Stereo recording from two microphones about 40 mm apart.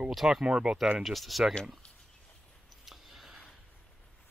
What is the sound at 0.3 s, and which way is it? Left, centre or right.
Speech, centre.